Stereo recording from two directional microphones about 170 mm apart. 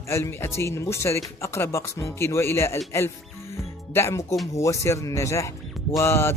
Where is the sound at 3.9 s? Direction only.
15° left (ahead or behind).